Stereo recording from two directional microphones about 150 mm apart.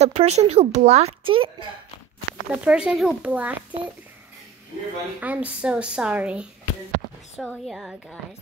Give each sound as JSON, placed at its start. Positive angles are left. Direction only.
{"t": 0.0, "sound": "speech", "side_deg": -45}
{"t": 2.5, "sound": "a woman's voice", "side_deg": -5}
{"t": 5.2, "sound": "a woman's voice", "side_deg": -10}